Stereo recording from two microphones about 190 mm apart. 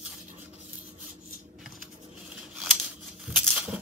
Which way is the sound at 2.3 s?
5° right (ahead or behind).